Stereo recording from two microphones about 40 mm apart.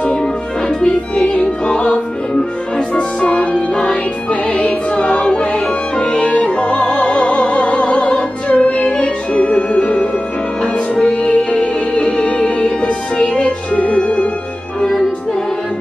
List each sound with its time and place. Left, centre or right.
0.2 s music: centre
11.2 s music: left